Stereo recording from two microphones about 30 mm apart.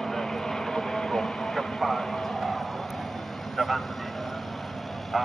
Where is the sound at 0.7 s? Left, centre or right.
Centre.